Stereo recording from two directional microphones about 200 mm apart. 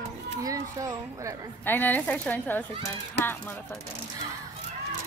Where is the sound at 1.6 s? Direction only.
10° left (ahead or behind).